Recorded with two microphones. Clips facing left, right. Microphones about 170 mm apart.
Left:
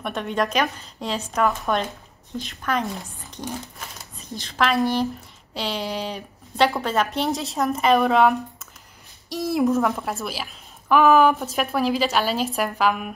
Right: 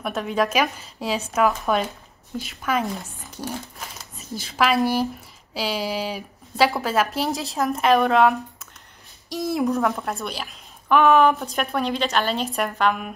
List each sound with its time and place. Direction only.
0.0 s a woman's voice: centre (ahead or behind)